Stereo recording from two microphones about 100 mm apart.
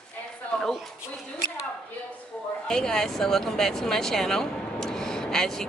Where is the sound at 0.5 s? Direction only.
5° left (ahead or behind).